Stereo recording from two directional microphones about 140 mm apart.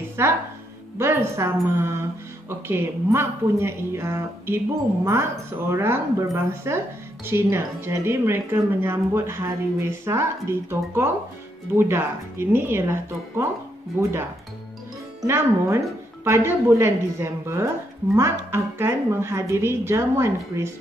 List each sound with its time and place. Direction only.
0.2 s a woman's voice: 15° right (ahead or behind)
5.7 s a woman's voice: 20° right (ahead or behind)
11.7 s a woman's voice: 15° right (ahead or behind)
15.2 s a woman's voice: 15° right (ahead or behind)